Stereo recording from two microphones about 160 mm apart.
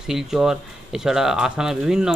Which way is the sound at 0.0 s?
5° right (ahead or behind).